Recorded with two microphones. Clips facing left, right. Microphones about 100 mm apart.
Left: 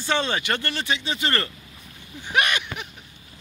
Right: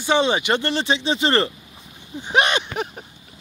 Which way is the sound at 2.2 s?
25° right (ahead or behind).